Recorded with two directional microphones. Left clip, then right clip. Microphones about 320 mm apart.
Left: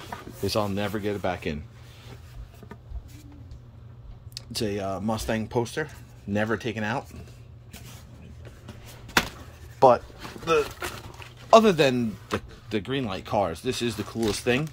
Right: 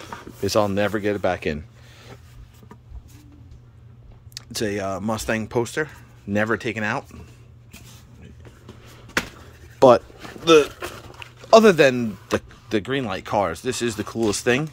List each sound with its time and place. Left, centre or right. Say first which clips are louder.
0.4 s speech: right 7 dB; centre
4.3 s speech: right 4 dB; centre
9.8 s a sound: right 4 dB; right
11.1 s speech: right 3 dB; centre